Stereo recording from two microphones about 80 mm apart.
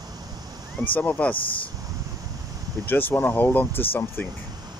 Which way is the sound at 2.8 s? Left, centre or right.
Left.